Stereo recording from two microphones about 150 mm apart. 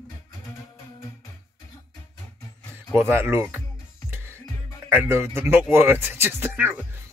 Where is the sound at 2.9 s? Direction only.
15° right (ahead or behind).